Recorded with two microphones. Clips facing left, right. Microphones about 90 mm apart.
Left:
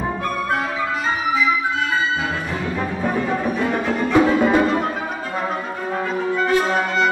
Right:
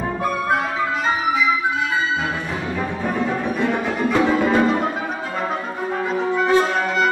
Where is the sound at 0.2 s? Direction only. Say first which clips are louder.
Right 5 dB; centre (ahead or behind).